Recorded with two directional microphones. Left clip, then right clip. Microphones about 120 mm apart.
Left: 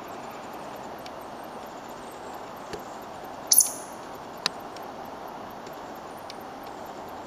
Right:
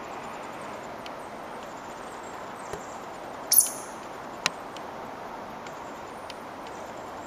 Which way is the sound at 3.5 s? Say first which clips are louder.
Left 4 dB; 15° left (ahead or behind).